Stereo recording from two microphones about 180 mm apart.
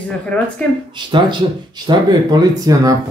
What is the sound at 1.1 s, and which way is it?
Speech, 25° right (ahead or behind).